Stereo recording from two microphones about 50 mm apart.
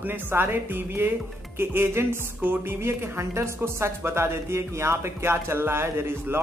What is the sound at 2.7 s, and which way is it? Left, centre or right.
Speech, right.